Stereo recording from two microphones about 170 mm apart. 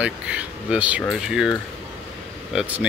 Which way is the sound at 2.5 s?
10° right (ahead or behind).